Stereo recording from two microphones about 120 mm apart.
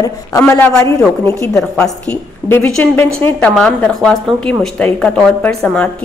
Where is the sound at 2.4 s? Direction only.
20° left (ahead or behind).